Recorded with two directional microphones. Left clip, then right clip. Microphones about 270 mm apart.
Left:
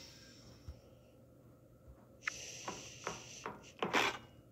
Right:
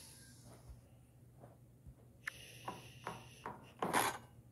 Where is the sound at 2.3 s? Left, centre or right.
Centre.